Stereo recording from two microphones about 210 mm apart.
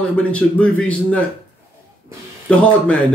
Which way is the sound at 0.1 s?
5° left (ahead or behind).